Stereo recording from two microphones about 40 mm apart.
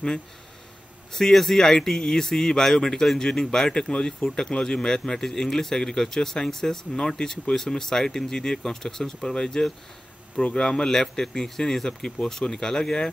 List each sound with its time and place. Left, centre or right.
1.1 s speech: centre